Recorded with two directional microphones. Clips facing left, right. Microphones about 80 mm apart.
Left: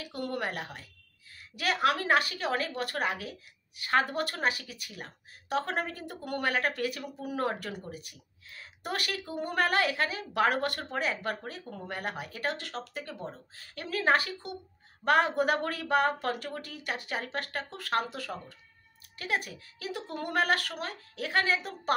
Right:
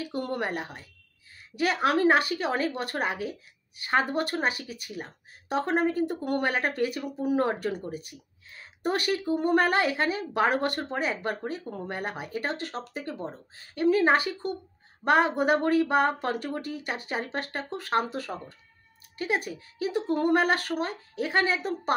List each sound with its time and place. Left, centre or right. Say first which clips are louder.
0.1 s a woman's voice: right 2 dB; right